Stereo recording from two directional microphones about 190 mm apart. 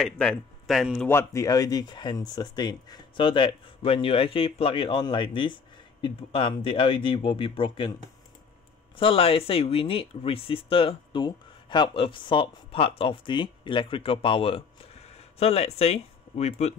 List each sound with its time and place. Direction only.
0.0 s speech: 5° left (ahead or behind)
1.0 s speech: 15° left (ahead or behind)
8.9 s speech: 30° left (ahead or behind)